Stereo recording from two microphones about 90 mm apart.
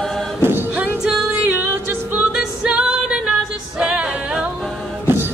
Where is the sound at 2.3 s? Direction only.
10° right (ahead or behind).